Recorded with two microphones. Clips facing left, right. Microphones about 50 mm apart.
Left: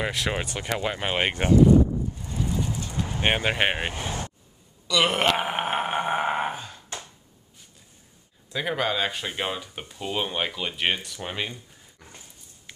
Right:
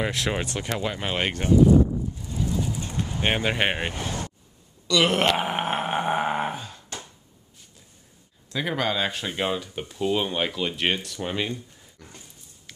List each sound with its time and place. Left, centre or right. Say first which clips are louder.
0.0 s speech: right 1 dB; centre
2.1 s vehicle: right 1 dB; centre
3.1 s speech: left 1 dB; centre
3.8 s speech: even; centre
4.8 s a sound: right 1 dB; centre
8.5 s speech: even; centre